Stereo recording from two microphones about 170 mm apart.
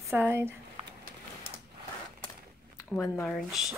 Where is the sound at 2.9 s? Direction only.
5° left (ahead or behind).